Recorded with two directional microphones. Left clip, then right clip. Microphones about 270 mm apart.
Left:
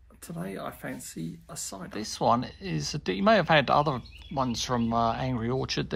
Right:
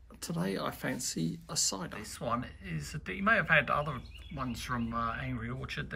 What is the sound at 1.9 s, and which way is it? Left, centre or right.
Speech, centre.